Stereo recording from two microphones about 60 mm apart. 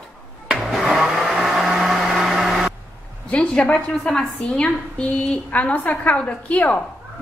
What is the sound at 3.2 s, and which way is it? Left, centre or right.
A woman's voice, centre.